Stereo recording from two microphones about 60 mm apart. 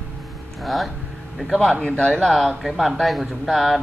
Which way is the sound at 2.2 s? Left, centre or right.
Centre.